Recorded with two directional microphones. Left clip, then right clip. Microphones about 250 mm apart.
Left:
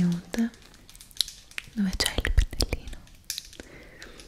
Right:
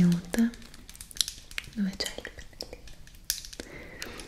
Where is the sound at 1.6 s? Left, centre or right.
Centre.